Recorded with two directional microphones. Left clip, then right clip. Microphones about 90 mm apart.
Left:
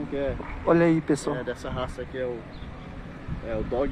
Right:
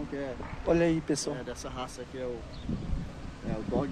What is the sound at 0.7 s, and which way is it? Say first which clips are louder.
Speech: left 6 dB; 20° right (ahead or behind).